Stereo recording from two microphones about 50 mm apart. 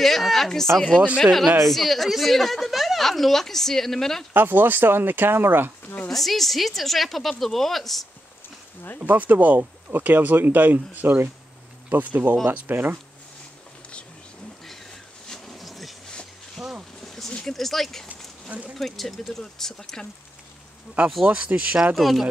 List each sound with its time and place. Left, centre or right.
0.0 s a woman's voice: centre
4.3 s speech: right
6.1 s a woman's voice: centre
9.0 s speech: right
15.2 s a sound: centre
17.0 s a sound: centre
17.5 s a woman's voice: centre
18.0 s a sound: right
18.8 s speech: centre
21.0 s speech: right
21.9 s a woman's voice: centre